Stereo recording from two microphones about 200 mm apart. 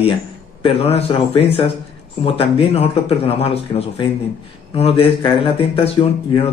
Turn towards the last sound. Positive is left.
turn(degrees=30)  # may be behind; listen again after turning